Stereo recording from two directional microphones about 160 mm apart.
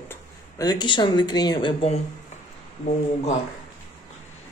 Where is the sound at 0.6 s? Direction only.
25° left (ahead or behind).